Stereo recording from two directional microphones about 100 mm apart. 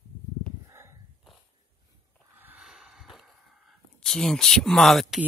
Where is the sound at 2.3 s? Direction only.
20° right (ahead or behind).